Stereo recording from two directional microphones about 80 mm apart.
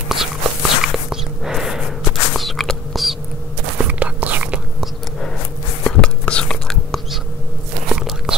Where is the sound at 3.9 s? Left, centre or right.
Centre.